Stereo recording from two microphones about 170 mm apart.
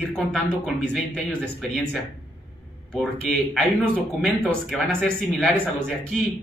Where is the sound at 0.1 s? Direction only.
Centre (ahead or behind).